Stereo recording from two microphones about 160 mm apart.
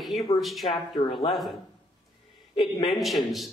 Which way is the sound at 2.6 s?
Centre (ahead or behind).